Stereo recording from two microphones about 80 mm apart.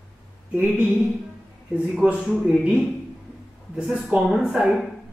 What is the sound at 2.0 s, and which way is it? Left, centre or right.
A man's voice, centre.